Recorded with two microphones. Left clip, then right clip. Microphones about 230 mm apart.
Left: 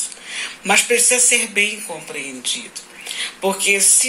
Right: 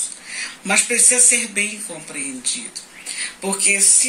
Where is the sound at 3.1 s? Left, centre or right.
Centre.